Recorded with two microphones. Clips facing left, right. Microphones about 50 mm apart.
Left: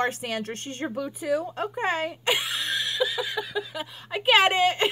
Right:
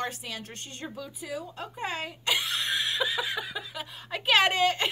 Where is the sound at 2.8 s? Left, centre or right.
Right; by 4.2 s centre.